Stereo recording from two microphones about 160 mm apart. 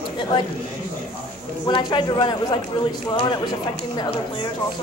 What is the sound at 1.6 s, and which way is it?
Speech, 30° left (ahead or behind).